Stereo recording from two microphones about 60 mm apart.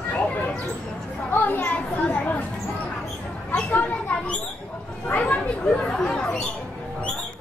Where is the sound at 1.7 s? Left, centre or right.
Left.